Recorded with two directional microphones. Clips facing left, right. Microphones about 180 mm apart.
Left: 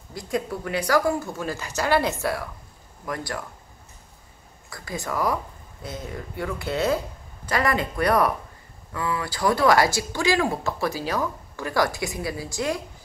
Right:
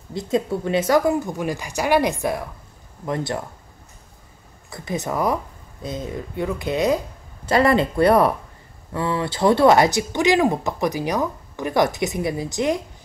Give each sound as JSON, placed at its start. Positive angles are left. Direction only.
{"t": 0.1, "sound": "speech", "side_deg": -25}
{"t": 4.6, "sound": "speech", "side_deg": -20}
{"t": 7.4, "sound": "speech", "side_deg": -30}